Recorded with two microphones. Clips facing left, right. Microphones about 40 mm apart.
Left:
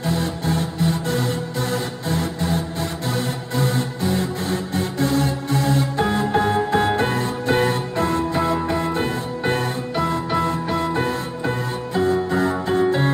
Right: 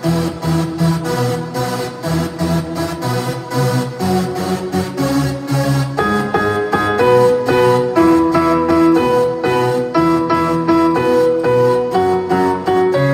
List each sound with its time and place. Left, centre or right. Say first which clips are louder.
0.0 s music: right 5 dB; left
3.5 s music: right 5 dB; left
5.9 s music: right 7 dB; right
8.3 s music: right 8 dB; right